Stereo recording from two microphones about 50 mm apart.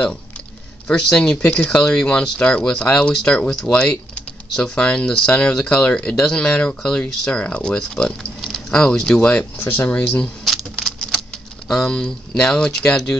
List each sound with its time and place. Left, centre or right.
0.8 s speech: centre
8.4 s a sound: centre
8.7 s speech: centre
9.7 s speech: left
10.4 s a sound: centre
11.7 s speech: centre